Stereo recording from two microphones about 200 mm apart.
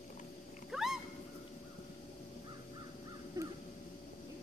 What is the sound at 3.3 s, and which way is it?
Crow, 15° right (ahead or behind).